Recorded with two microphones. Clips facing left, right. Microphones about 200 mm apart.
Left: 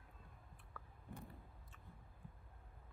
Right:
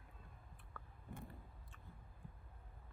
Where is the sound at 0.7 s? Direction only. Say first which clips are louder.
Right 1 dB; centre (ahead or behind).